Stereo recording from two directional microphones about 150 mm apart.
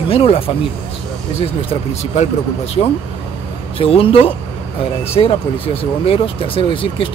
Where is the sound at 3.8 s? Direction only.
40° left (ahead or behind).